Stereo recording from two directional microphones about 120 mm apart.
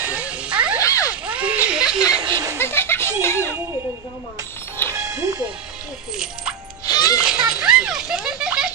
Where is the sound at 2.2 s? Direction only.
35° right (ahead or behind).